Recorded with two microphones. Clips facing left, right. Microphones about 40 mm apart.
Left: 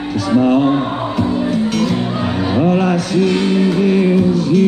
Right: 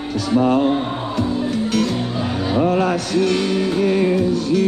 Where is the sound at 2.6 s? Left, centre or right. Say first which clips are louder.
Left 3 dB; centre.